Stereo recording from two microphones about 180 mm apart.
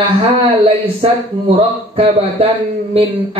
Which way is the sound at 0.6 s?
30° right (ahead or behind).